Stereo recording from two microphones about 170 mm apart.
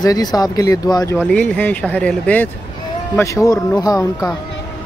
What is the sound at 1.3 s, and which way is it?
Speech, 10° left (ahead or behind).